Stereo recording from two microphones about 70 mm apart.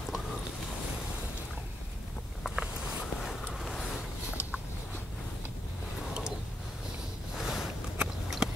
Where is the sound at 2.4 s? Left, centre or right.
Centre.